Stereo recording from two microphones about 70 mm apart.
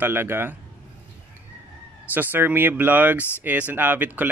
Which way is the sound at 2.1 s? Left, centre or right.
Right.